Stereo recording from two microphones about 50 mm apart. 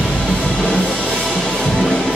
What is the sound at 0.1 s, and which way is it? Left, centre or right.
Music, centre.